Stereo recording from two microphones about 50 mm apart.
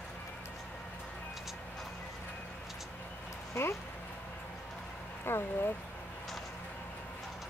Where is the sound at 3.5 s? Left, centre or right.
Left.